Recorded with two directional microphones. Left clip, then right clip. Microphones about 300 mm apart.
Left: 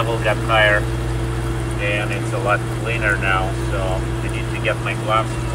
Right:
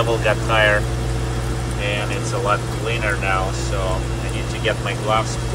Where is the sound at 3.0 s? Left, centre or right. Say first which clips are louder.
Left 3 dB; centre.